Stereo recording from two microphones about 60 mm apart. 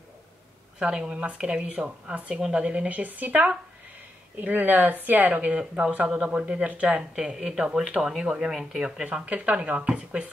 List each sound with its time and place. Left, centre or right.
0.7 s speech: centre
5.5 s speech: centre
9.2 s speech: right